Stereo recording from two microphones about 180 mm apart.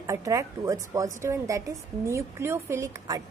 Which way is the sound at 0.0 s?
15° right (ahead or behind).